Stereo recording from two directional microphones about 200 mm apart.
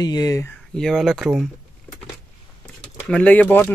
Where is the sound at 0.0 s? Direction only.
20° left (ahead or behind).